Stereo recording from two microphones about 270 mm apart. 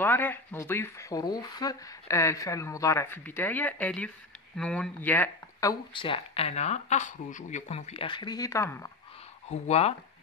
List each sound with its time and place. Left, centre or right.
0.0 s speech: centre
9.5 s speech: left